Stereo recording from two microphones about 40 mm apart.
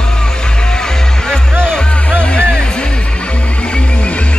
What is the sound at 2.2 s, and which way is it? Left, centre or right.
Music, left.